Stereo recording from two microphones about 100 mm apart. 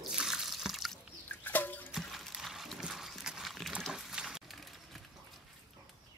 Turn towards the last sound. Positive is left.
turn(degrees=0)  # may be behind; listen again after turning